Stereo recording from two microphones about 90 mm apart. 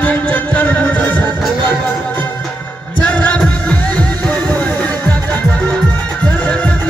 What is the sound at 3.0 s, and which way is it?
Music, 15° left (ahead or behind).